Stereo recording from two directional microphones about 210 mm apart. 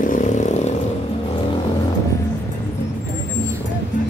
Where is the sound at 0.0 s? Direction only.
35° left (ahead or behind).